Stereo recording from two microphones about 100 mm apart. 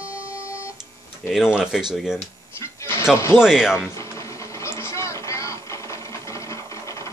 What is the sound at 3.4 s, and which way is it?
Speech, 5° right (ahead or behind).